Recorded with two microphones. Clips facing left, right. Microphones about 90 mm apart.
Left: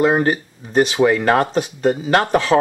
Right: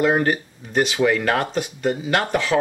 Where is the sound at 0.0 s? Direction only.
30° left (ahead or behind).